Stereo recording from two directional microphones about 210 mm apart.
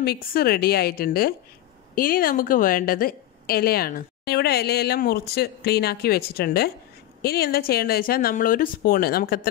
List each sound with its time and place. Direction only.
0.0 s a woman's voice: 45° left (ahead or behind)